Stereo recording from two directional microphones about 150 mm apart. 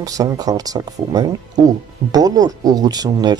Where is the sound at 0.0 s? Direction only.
25° right (ahead or behind).